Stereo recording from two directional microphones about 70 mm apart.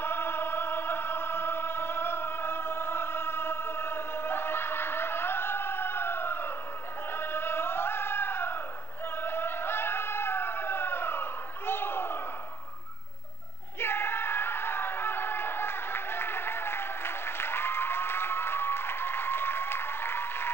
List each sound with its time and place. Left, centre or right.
0.0 s music: left
7.1 s a sound: left
13.7 s music: left